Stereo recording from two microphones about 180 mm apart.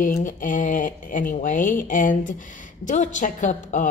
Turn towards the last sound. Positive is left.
turn(degrees=45)  # may be behind; listen again after turning